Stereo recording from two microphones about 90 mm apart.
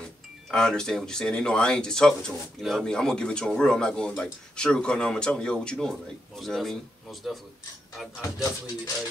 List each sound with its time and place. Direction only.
0.5 s speech: 5° left (ahead or behind)
8.2 s speech: 40° left (ahead or behind)